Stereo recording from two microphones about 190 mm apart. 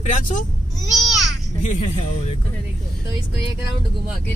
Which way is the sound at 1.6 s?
40° left (ahead or behind).